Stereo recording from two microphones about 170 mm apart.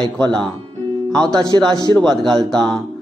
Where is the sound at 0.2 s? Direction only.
5° left (ahead or behind).